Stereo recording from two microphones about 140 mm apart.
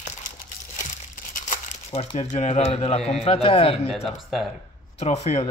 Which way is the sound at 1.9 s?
50° left (ahead or behind).